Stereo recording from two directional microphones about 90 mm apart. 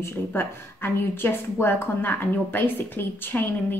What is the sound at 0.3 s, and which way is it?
A woman's voice, 25° left (ahead or behind).